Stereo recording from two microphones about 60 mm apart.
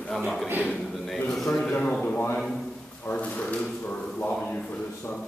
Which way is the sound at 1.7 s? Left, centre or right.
Left.